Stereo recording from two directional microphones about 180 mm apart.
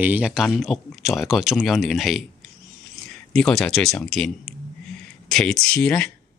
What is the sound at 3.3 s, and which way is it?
Speech, 5° left (ahead or behind).